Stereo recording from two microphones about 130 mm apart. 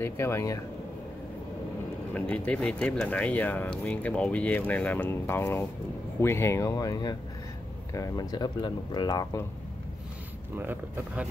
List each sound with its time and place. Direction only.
0.0 s speech: 20° left (ahead or behind)
2.1 s speech: 10° left (ahead or behind); by 9.5 s 25° left (ahead or behind)
10.6 s speech: 15° right (ahead or behind)